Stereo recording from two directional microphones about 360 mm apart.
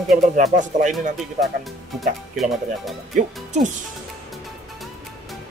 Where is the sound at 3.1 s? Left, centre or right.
Right.